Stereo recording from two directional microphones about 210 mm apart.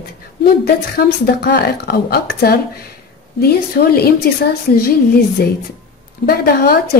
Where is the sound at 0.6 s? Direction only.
45° left (ahead or behind).